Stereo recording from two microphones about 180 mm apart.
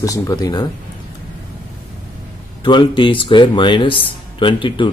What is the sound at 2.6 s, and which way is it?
Speech, 25° left (ahead or behind).